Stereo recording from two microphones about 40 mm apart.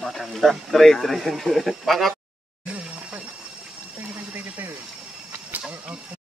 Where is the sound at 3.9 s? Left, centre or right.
Right.